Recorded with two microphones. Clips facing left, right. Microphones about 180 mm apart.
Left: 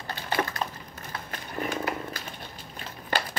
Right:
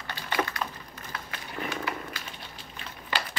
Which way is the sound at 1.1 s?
45° left (ahead or behind).